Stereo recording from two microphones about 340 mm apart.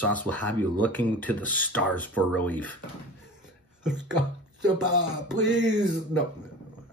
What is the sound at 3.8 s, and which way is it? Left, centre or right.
Speech, centre.